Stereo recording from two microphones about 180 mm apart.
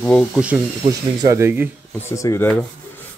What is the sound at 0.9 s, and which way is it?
Speech, 20° right (ahead or behind).